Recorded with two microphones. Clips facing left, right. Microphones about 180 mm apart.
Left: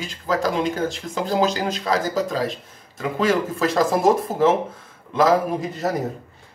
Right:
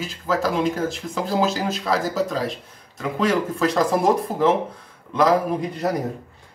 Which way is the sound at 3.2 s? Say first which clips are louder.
Even; centre (ahead or behind).